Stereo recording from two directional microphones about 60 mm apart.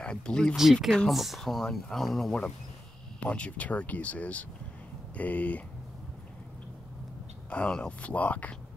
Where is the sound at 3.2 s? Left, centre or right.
Left.